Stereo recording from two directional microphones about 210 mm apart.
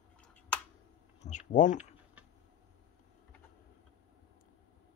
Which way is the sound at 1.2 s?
35° left (ahead or behind).